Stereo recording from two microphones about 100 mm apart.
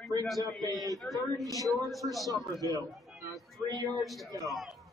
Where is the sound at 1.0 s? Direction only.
Centre (ahead or behind).